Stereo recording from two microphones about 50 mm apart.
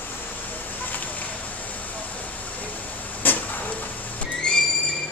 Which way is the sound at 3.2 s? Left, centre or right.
Left.